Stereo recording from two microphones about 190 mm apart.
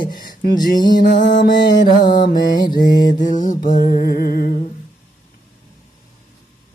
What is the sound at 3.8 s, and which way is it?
Music, 50° left (ahead or behind).